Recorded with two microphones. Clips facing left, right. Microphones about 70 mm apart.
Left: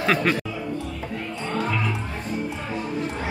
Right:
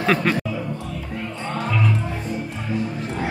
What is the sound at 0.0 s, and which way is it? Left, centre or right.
Speech, centre.